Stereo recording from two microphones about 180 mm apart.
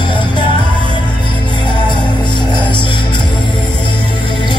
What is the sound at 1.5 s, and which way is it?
Music, 25° left (ahead or behind).